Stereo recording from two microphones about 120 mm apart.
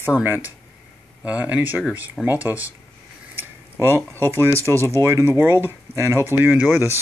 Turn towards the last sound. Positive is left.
turn(degrees=-20)  # may be behind; listen again after turning